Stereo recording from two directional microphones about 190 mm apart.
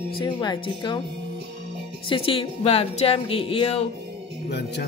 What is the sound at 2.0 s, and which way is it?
Speech, 25° left (ahead or behind).